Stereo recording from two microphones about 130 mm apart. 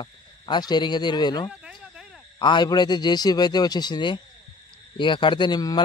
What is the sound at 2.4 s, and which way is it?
Speech, 35° left (ahead or behind).